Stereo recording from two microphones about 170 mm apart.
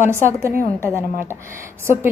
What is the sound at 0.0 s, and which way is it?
Speech, 15° right (ahead or behind).